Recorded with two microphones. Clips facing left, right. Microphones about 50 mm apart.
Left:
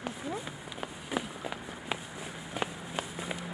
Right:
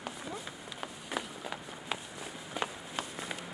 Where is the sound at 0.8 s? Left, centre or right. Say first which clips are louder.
Left 3 dB; centre.